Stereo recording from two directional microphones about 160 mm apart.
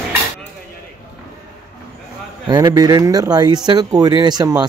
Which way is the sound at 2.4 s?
25° right (ahead or behind).